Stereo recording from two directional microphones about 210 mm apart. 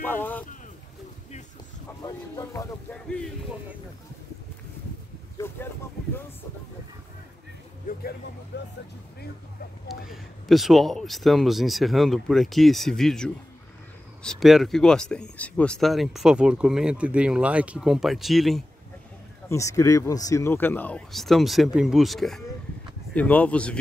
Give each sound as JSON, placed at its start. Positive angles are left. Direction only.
{"t": 0.0, "sound": "speech", "side_deg": 10}
{"t": 2.0, "sound": "speech", "side_deg": 15}
{"t": 7.9, "sound": "speech", "side_deg": 40}
{"t": 8.5, "sound": "speech", "side_deg": 55}
{"t": 9.8, "sound": "speech", "side_deg": 0}
{"t": 19.5, "sound": "speech", "side_deg": 15}